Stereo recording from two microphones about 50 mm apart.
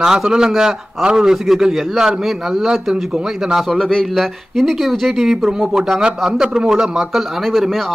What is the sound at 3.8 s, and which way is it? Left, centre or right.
A man's voice, centre.